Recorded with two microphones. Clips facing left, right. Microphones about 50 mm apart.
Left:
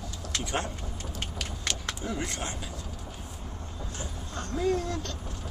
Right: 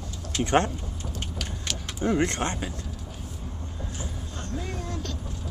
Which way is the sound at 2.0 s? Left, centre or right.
Right.